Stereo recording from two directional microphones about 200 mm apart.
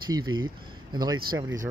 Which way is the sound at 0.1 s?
20° right (ahead or behind).